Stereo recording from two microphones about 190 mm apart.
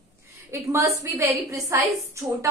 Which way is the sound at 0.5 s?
15° right (ahead or behind).